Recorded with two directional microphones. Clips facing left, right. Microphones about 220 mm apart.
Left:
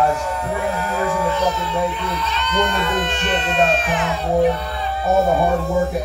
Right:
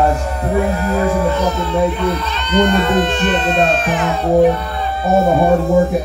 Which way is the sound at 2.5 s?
35° right (ahead or behind).